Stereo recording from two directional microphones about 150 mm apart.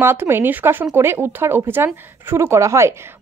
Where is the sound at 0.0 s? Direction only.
15° right (ahead or behind).